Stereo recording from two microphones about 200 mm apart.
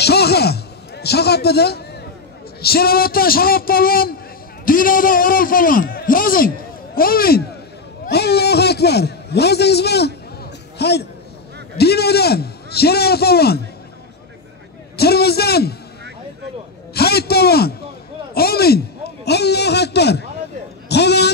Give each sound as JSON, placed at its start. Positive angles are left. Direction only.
{"t": 0.0, "sound": "a sound", "side_deg": 55}
{"t": 2.6, "sound": "a man's voice", "side_deg": 50}
{"t": 15.0, "sound": "a man's voice", "side_deg": 55}
{"t": 16.9, "sound": "a man's voice", "side_deg": 50}